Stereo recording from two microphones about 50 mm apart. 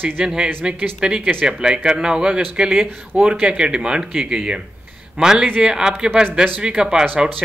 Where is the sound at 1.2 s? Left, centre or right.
Right.